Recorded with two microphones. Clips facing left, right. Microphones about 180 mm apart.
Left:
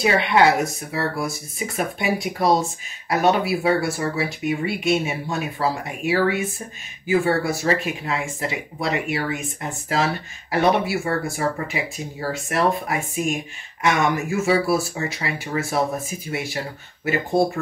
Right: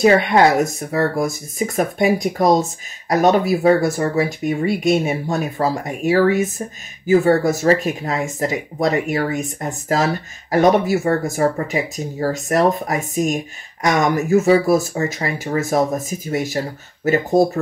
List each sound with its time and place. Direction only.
0.0 s speech: 45° right (ahead or behind)